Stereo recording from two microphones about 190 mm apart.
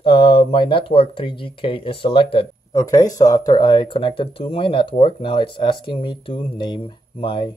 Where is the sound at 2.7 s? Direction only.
15° left (ahead or behind).